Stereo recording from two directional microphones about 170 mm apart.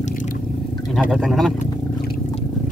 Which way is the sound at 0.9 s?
Centre (ahead or behind).